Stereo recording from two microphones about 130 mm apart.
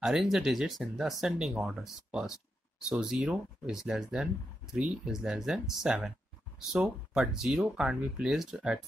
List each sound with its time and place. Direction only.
0.0 s speech: 5° right (ahead or behind)